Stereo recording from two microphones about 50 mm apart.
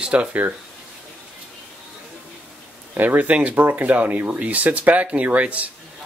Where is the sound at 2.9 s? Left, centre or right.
Right.